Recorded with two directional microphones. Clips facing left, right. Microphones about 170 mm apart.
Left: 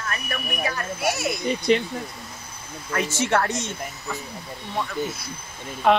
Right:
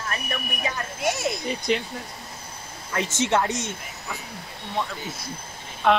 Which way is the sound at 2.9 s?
20° right (ahead or behind).